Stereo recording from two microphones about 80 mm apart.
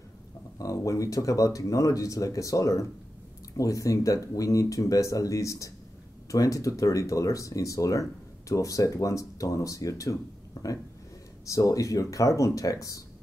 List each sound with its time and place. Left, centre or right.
0.6 s speech: left